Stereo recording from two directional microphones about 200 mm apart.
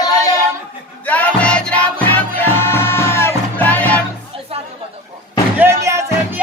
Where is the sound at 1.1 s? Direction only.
5° left (ahead or behind).